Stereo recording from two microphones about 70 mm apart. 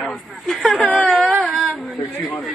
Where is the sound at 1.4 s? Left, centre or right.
Centre.